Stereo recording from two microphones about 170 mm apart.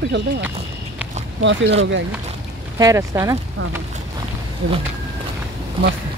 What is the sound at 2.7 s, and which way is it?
Speech, 20° right (ahead or behind).